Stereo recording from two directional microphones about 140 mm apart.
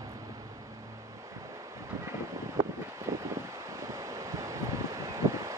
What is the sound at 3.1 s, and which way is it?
Vehicle, 20° right (ahead or behind).